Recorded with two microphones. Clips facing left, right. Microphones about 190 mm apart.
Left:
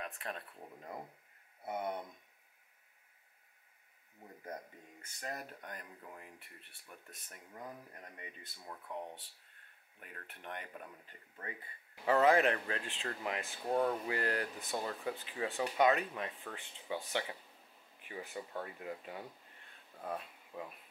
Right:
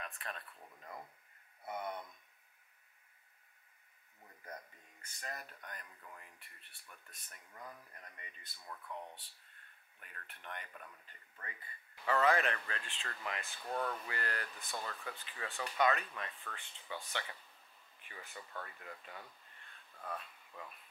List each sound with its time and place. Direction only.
0.0 s speech: 10° left (ahead or behind)
4.2 s speech: 15° left (ahead or behind)
19.4 s a sound: 10° left (ahead or behind)